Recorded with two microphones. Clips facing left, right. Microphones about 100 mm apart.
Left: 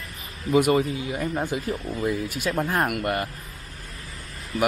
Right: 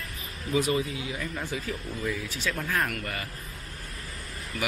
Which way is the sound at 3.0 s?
55° left (ahead or behind).